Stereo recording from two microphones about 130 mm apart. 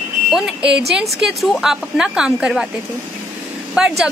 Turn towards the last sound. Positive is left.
turn(degrees=-5)  # may be behind; listen again after turning